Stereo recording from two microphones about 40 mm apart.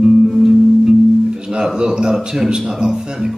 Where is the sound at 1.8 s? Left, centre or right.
Centre.